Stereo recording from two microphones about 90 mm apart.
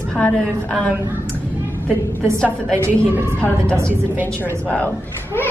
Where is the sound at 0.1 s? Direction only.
10° left (ahead or behind).